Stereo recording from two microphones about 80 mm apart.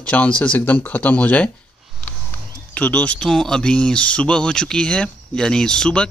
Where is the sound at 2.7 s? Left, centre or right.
Centre.